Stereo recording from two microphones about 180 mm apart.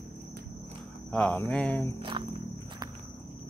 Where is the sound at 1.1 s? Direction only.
10° left (ahead or behind).